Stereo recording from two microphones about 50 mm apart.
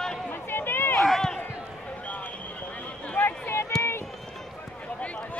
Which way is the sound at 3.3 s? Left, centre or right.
Left.